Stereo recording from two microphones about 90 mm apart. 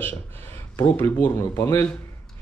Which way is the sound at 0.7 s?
25° left (ahead or behind).